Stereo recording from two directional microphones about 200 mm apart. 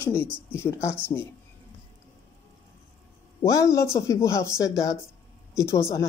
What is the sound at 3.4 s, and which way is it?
Speech, 15° left (ahead or behind).